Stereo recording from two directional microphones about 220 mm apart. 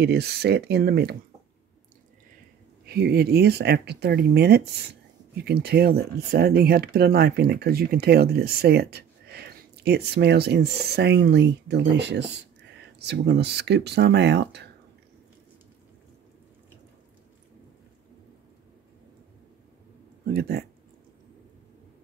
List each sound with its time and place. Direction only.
0.0 s speech: 50° right (ahead or behind)
2.9 s speech: 50° right (ahead or behind)
20.3 s speech: 45° right (ahead or behind)